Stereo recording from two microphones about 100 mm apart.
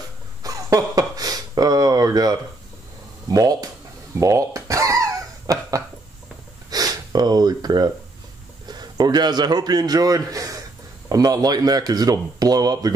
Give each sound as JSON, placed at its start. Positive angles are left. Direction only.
{"t": 0.4, "sound": "a sound", "side_deg": -35}
{"t": 3.3, "sound": "speech", "side_deg": -40}
{"t": 4.2, "sound": "fowl", "side_deg": -30}
{"t": 6.7, "sound": "snort", "side_deg": -40}
{"t": 8.6, "sound": "a man's voice", "side_deg": -45}